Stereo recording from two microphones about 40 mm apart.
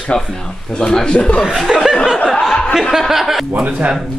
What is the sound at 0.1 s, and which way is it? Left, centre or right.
A man's voice, left.